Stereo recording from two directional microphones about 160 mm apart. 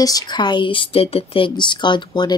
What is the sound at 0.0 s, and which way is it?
Speech, 25° left (ahead or behind).